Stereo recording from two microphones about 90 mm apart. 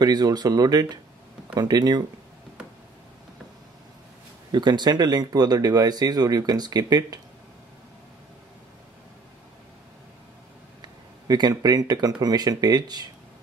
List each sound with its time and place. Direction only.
0.0 s speech: 50° right (ahead or behind)
4.5 s speech: 55° right (ahead or behind)
10.8 s a sound: 50° right (ahead or behind)
12.2 s speech: 45° right (ahead or behind)